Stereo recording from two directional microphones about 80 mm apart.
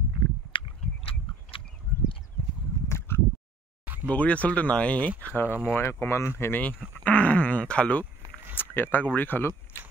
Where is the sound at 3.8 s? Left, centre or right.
Right.